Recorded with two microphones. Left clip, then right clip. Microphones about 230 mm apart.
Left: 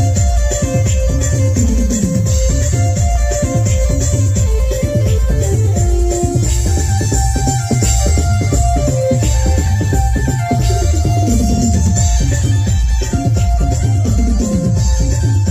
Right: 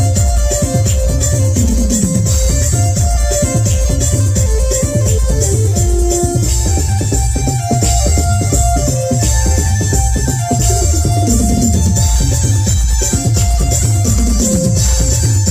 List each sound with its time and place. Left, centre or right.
0.6 s music: right
7.4 s music: left
8.5 s music: centre
11.3 s music: right
14.0 s music: right